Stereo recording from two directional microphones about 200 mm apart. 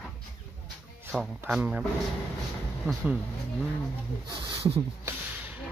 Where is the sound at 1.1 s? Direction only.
Centre (ahead or behind).